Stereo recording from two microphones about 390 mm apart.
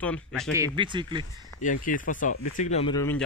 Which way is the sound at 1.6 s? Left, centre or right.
Centre.